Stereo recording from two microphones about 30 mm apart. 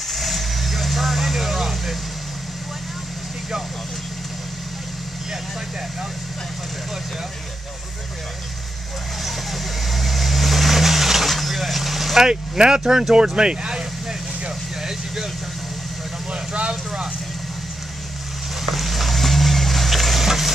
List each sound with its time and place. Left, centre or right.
0.1 s vehicle: centre
9.2 s vehicle: centre
12.2 s speech: right
14.8 s vehicle: centre
16.3 s vehicle: right
18.7 s vehicle: centre
20.2 s a sound: centre